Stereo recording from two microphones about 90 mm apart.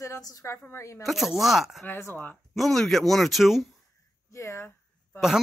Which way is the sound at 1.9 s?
25° left (ahead or behind).